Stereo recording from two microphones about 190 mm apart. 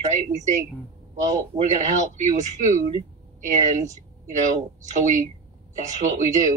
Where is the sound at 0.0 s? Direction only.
40° right (ahead or behind).